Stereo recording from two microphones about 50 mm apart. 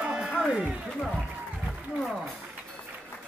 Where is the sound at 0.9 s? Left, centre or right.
Centre.